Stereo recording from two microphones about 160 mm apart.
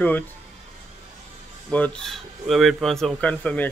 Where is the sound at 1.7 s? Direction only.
5° left (ahead or behind).